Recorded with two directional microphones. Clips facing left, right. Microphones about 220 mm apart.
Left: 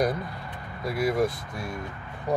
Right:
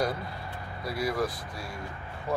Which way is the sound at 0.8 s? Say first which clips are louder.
Left 5 dB; 20° left (ahead or behind).